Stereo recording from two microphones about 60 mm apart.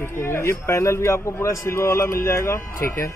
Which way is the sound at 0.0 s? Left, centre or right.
Left.